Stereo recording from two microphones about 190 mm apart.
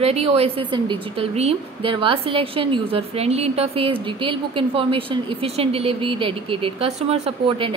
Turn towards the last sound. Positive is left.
turn(degrees=-25)  # may be behind; listen again after turning